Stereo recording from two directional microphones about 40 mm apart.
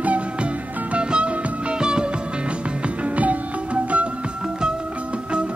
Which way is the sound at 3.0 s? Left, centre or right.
Right.